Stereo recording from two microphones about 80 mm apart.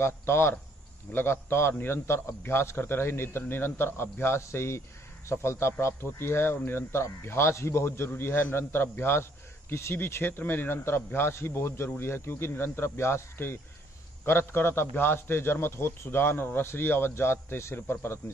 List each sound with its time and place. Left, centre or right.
0.0 s a man's voice: left